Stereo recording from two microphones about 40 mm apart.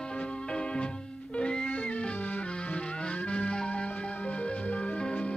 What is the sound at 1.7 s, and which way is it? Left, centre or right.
Music, left.